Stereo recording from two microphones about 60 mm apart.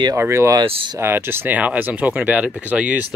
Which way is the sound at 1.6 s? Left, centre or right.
Right.